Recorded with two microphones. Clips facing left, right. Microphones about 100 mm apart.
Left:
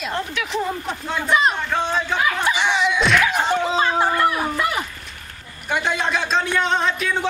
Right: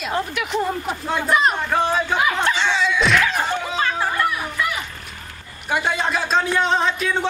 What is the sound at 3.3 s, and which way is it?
Slap, 15° left (ahead or behind).